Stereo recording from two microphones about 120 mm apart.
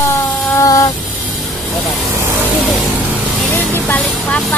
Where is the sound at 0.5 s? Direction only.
30° left (ahead or behind).